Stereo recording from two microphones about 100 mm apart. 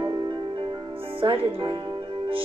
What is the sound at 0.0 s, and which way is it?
Music, 50° right (ahead or behind).